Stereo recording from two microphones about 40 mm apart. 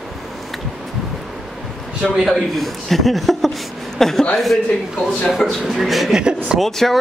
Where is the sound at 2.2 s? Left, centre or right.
Centre.